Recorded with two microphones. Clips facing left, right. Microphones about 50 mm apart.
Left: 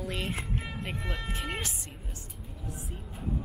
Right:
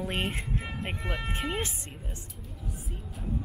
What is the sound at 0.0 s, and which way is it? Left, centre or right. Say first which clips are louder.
Speech: right 2 dB; right.